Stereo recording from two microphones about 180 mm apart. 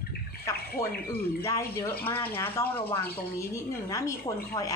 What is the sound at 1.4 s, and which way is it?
A woman's voice, 15° left (ahead or behind).